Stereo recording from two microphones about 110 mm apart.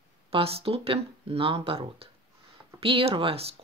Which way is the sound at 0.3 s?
60° right (ahead or behind).